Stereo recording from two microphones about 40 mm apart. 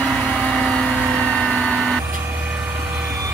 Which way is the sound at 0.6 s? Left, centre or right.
Centre.